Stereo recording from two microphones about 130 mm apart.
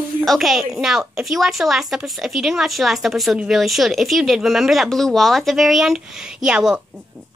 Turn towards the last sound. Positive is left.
turn(degrees=-5)  # may be behind; listen again after turning